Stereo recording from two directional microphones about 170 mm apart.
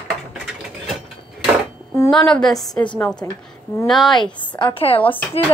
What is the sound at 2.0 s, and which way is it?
Speech, 5° left (ahead or behind).